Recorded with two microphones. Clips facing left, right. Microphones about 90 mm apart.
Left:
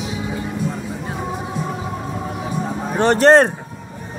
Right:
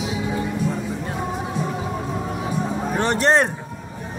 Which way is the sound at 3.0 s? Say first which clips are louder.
Left 7 dB; 40° left (ahead or behind).